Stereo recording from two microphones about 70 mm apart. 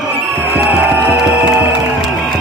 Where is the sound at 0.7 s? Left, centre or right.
Right.